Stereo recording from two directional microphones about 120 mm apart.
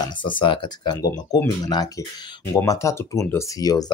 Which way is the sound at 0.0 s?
40° left (ahead or behind).